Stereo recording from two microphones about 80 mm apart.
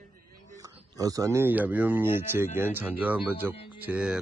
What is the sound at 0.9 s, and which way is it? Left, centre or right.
Speech, right.